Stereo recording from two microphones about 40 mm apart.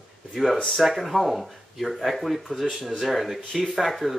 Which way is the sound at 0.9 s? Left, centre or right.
Centre.